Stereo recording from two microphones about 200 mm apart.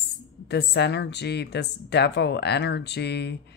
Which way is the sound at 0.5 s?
55° left (ahead or behind).